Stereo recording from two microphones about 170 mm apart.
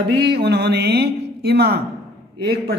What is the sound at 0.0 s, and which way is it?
Speech, 75° right (ahead or behind).